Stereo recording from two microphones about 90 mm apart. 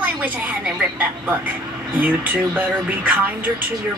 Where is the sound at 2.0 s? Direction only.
15° right (ahead or behind).